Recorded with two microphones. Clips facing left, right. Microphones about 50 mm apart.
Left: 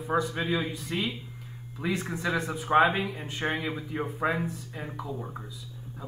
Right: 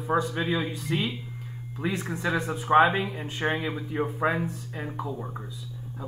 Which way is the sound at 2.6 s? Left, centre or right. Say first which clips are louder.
Right 3 dB; centre.